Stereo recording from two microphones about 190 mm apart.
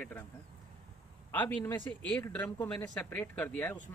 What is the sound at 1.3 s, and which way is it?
Speech, 10° left (ahead or behind).